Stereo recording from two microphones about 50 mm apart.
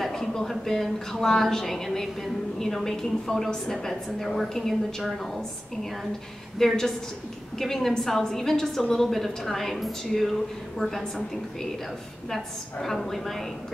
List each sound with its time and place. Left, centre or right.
0.0 s a woman's voice: centre
6.6 s a woman's voice: centre
12.8 s a woman's voice: centre